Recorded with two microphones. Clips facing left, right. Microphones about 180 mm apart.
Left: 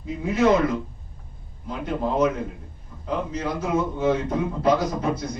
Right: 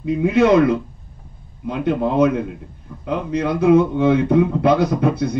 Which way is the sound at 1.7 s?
65° right (ahead or behind).